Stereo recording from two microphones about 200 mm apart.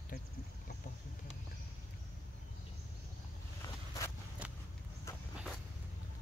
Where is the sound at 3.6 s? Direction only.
15° left (ahead or behind).